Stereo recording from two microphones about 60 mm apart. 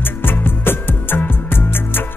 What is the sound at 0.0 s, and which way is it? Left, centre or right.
Music, left.